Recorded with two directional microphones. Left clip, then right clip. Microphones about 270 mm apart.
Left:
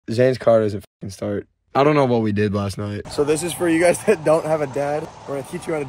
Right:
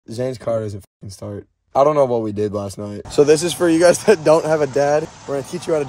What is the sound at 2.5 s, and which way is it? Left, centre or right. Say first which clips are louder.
Speech: even; centre.